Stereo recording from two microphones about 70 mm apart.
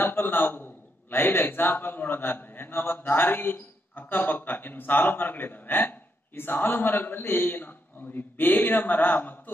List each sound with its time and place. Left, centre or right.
0.0 s a man's voice: left